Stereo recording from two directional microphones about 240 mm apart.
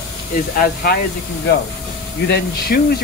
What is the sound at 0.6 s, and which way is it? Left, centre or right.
Speech, left.